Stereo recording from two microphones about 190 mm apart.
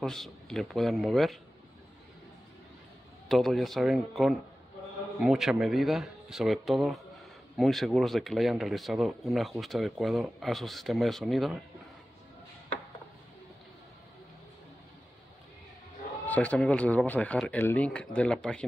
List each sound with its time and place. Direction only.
0.0 s speech: centre (ahead or behind)
3.3 s speech: centre (ahead or behind)
16.3 s speech: 5° left (ahead or behind)